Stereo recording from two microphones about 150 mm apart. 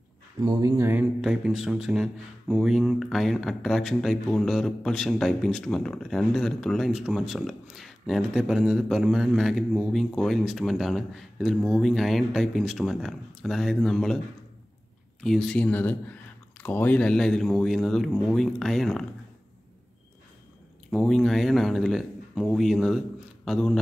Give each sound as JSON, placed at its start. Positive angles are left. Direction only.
{"t": 0.4, "sound": "speech", "side_deg": -25}
{"t": 1.2, "sound": "speech", "side_deg": -5}
{"t": 20.9, "sound": "speech", "side_deg": 5}